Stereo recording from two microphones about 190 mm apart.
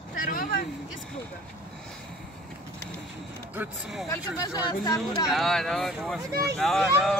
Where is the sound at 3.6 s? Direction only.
10° right (ahead or behind).